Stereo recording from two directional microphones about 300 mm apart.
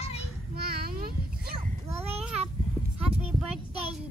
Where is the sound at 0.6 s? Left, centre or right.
Right.